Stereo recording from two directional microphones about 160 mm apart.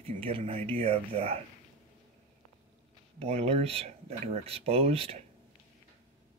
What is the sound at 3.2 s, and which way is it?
Speech, 40° right (ahead or behind).